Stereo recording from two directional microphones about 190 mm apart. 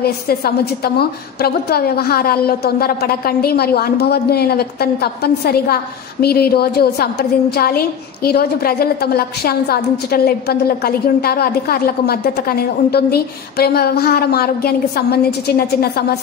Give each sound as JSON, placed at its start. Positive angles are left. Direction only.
{"t": 0.0, "sound": "a woman's voice", "side_deg": 55}